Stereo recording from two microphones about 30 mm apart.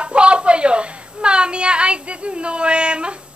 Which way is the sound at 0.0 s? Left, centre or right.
Right.